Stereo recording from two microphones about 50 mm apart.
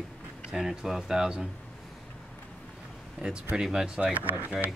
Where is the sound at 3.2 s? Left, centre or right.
Right.